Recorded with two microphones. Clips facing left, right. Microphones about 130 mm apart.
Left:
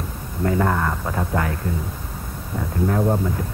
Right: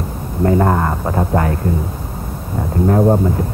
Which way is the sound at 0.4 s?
35° right (ahead or behind).